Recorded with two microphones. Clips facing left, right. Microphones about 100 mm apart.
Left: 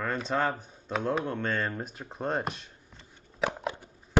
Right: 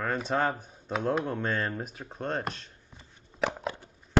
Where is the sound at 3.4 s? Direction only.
5° left (ahead or behind).